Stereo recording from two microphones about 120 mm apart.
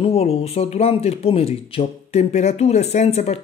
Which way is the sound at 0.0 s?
60° left (ahead or behind).